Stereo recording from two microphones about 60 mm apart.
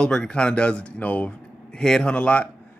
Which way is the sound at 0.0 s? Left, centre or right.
Centre.